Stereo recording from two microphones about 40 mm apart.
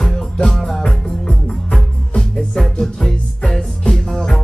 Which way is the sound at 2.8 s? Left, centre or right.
Centre.